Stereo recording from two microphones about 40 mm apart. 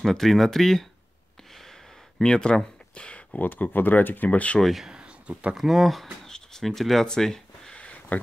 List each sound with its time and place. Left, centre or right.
0.0 s speech: centre
2.2 s speech: centre
3.3 s speech: left
4.3 s speech: left
4.6 s speech: centre
4.8 s a sound: right
5.6 s speech: centre
6.2 s a sound: centre
7.1 s speech: centre
7.7 s a sound: left